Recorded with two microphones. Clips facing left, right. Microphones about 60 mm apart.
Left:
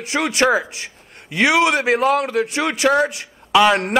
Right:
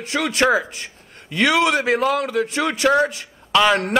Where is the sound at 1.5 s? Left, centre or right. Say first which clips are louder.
Left 2 dB; left.